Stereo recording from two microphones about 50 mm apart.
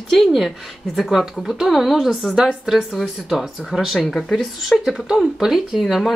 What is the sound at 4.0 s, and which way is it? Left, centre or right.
Speech, centre.